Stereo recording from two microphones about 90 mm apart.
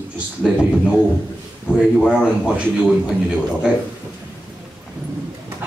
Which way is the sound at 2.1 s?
10° right (ahead or behind).